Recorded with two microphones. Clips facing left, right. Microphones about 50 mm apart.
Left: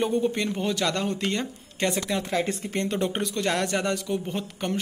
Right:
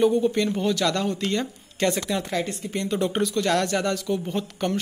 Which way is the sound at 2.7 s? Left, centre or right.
Left.